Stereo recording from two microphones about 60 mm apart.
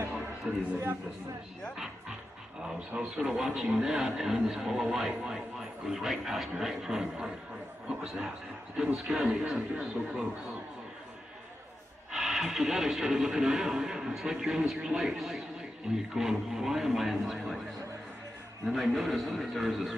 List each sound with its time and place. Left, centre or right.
0.5 s a man's voice: centre
2.9 s speech: right
3.3 s a man's voice: centre
12.1 s speech: centre
18.7 s speech: centre